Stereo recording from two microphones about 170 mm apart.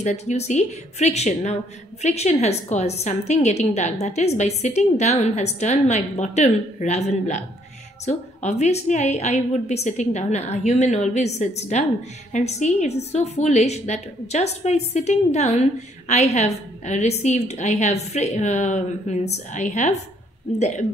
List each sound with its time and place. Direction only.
0.0 s a woman's voice: 40° left (ahead or behind)